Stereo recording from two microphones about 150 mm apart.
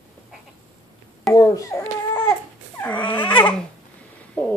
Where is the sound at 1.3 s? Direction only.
20° left (ahead or behind).